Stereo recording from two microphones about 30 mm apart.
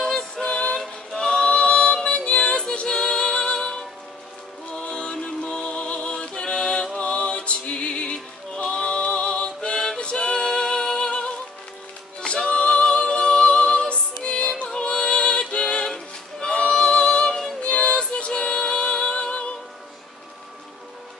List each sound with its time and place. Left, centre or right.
0.0 s music: left
1.4 s yodeling: left
2.0 s music: left
4.9 s music: left
11.1 s music: left
17.6 s music: left